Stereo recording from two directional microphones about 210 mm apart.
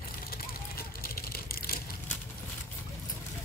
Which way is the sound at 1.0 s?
45° left (ahead or behind).